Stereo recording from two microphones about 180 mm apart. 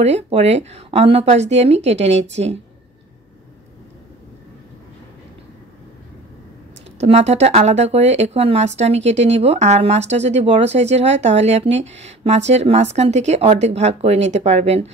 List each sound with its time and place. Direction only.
0.0 s speech: 35° right (ahead or behind)
7.0 s speech: 35° right (ahead or behind)